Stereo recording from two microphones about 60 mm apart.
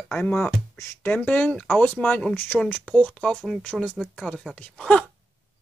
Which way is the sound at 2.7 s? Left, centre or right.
Left.